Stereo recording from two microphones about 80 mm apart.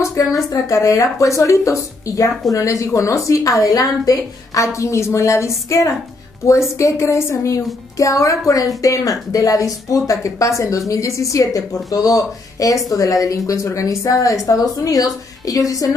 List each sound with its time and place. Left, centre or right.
0.5 s a woman's voice: left